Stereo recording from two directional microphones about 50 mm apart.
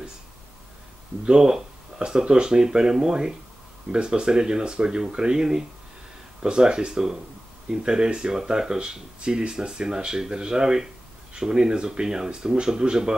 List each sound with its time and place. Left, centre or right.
1.2 s speech: centre